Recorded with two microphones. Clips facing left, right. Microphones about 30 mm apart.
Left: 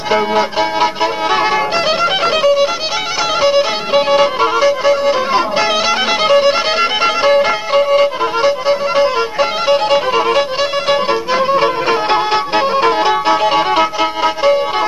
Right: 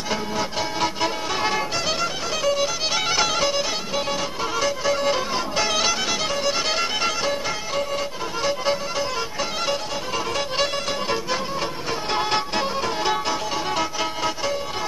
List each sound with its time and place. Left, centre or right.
0.4 s music: left
10.1 s violin: left
11.1 s music: left
12.2 s music: left
12.7 s music: left
13.7 s music: left